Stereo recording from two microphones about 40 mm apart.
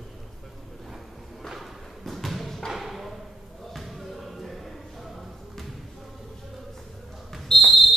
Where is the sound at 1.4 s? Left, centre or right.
Centre.